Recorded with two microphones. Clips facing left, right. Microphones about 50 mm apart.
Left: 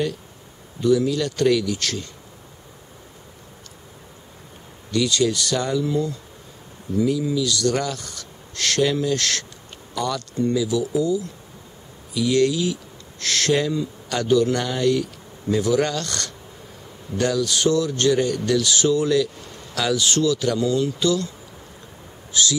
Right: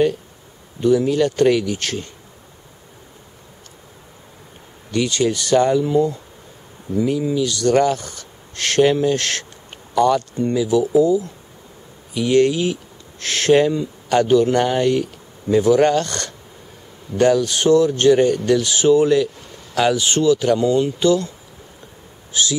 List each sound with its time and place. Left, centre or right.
0.7 s speech: right
4.9 s speech: right
22.3 s speech: right